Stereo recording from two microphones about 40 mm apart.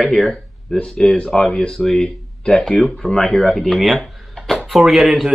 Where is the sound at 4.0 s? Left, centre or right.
Centre.